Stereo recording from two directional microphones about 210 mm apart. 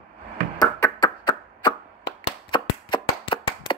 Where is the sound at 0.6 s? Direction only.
20° left (ahead or behind).